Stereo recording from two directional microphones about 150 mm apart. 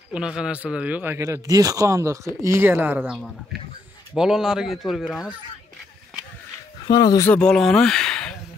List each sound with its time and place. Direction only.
0.1 s a man's voice: 5° right (ahead or behind)
4.2 s speech: 5° right (ahead or behind)
6.9 s speech: 25° left (ahead or behind)
7.2 s speech: 5° left (ahead or behind)